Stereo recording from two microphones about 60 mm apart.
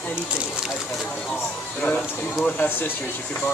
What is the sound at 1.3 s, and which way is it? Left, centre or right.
Speech, left.